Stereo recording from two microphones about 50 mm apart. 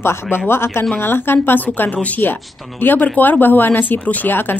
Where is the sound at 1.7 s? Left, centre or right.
Left.